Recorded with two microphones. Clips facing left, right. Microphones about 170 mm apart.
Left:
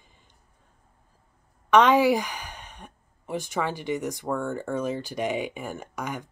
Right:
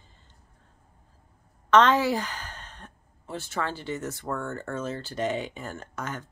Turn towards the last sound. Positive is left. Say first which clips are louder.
# left 2 dB
turn(degrees=15)  # may be behind; listen again after turning